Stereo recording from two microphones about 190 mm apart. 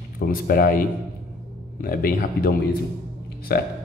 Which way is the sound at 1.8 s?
50° left (ahead or behind).